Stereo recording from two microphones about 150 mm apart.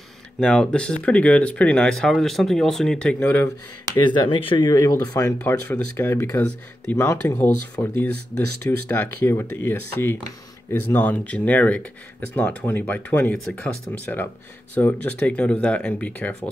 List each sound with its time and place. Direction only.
0.4 s speech: 5° left (ahead or behind)
4.1 s speech: 35° left (ahead or behind)
4.6 s speech: 25° left (ahead or behind)